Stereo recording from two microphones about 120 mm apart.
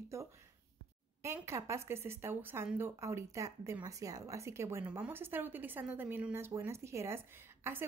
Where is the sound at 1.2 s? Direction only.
25° right (ahead or behind).